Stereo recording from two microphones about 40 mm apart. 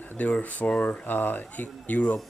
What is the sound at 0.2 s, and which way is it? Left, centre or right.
Speech, left.